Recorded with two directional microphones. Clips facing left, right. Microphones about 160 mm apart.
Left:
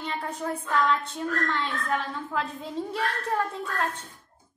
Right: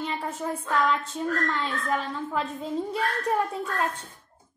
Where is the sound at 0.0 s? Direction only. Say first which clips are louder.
Right 2 dB; 10° right (ahead or behind).